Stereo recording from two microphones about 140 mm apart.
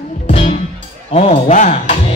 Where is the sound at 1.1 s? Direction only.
45° left (ahead or behind); by 2.0 s 60° left (ahead or behind).